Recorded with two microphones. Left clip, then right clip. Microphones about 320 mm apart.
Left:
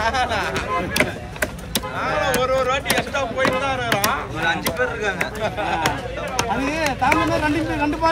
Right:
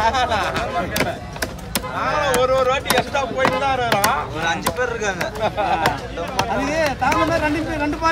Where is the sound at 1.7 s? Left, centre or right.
Centre.